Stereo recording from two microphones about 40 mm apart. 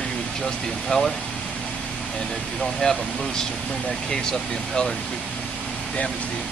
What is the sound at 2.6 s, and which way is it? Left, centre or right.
Speech, centre.